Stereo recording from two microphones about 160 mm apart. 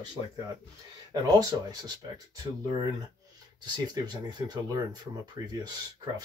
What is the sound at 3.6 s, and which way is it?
Speech, 25° right (ahead or behind).